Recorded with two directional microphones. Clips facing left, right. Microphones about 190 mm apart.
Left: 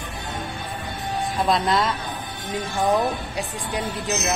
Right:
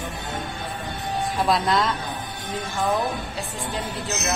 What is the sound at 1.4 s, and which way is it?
Speech, centre (ahead or behind).